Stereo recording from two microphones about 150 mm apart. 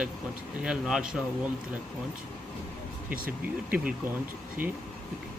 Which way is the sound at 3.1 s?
75° right (ahead or behind).